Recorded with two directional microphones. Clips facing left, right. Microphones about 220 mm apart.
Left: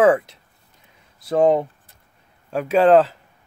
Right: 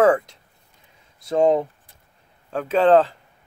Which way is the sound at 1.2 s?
Centre (ahead or behind).